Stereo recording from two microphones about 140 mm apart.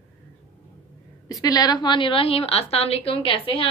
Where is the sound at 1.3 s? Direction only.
25° left (ahead or behind).